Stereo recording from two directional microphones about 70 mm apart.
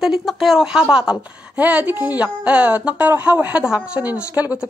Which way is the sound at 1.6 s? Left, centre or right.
Right.